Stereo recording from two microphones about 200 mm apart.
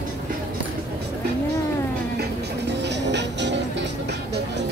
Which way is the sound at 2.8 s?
60° right (ahead or behind).